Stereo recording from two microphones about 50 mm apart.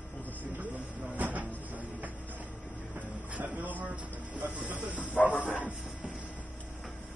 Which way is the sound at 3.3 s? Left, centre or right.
Right.